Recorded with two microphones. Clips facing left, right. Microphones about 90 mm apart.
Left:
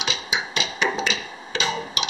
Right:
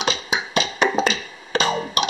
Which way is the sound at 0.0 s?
45° right (ahead or behind).